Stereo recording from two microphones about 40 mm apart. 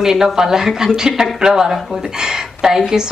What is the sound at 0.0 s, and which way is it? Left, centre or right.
Speech, centre.